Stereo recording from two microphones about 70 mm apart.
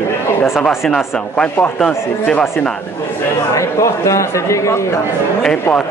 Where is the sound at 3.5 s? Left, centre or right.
Left.